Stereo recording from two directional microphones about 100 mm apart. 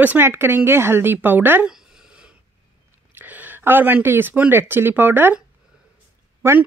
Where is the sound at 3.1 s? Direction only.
20° right (ahead or behind).